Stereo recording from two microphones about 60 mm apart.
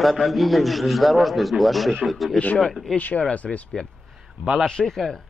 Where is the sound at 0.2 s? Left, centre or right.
Centre.